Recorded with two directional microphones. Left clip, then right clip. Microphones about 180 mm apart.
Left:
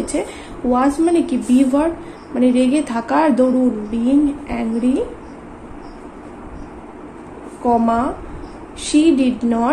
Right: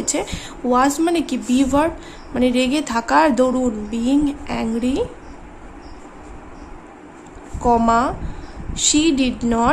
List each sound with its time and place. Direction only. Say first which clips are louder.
0.0 s a woman's voice: left 1 dB; 20° right (ahead or behind)
7.6 s a woman's voice: right 1 dB; 20° right (ahead or behind)